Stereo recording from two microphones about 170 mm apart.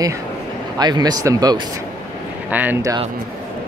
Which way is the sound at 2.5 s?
10° right (ahead or behind).